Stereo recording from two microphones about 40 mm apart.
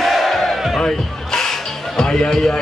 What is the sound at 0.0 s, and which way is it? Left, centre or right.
Battle cry, centre.